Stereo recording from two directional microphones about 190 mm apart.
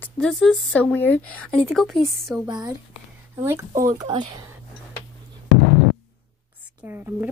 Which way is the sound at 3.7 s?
45° right (ahead or behind).